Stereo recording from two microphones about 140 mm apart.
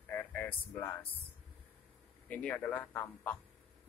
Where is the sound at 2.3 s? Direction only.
10° left (ahead or behind).